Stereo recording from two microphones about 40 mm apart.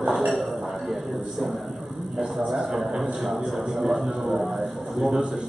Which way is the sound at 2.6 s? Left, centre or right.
Centre.